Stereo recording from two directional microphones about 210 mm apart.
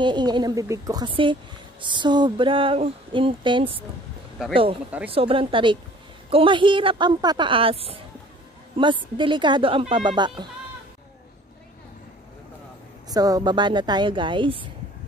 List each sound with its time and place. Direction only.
0.0 s a woman's voice: 20° right (ahead or behind)
5.1 s a woman's voice: 25° right (ahead or behind)
13.1 s a woman's voice: 15° right (ahead or behind)